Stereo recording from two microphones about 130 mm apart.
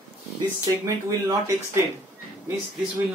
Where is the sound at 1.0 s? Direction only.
25° right (ahead or behind).